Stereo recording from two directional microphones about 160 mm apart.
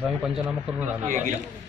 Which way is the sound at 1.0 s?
50° right (ahead or behind).